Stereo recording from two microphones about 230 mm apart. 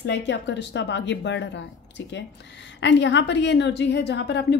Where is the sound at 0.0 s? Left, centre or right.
Left.